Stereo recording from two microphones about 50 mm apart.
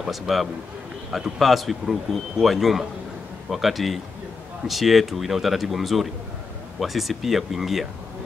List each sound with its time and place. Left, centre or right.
0.1 s a man's voice: centre